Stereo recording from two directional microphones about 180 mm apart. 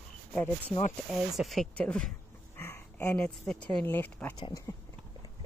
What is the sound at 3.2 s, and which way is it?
Speech, 5° left (ahead or behind).